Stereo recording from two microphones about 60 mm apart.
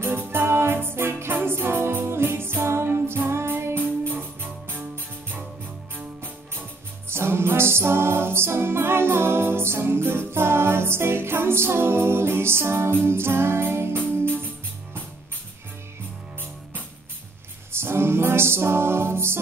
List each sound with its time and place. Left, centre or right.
0.3 s music: right
4.1 s music: right
7.1 s music: right
13.9 s music: left
17.7 s music: right